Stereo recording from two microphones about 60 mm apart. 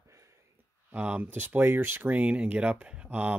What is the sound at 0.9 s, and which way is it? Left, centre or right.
Speech, right.